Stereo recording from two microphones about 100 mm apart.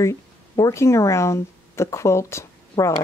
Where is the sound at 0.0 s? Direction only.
30° left (ahead or behind).